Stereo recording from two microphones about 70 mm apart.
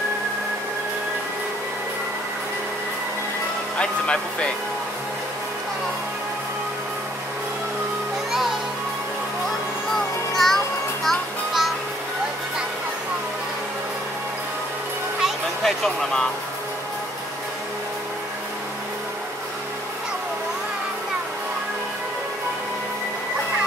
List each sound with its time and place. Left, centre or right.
3.7 s speech: centre
10.3 s music: centre
15.2 s music: centre